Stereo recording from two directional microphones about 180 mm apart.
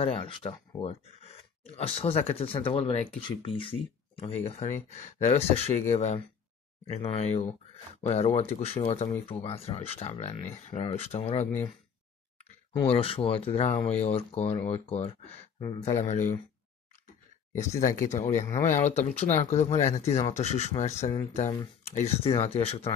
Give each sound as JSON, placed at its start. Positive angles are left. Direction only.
{"t": 0.0, "sound": "speech", "side_deg": 30}
{"t": 12.8, "sound": "speech", "side_deg": 30}
{"t": 17.6, "sound": "speech", "side_deg": 40}